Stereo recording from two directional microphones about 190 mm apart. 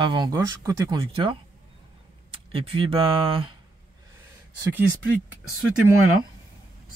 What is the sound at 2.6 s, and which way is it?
Speech, 25° right (ahead or behind).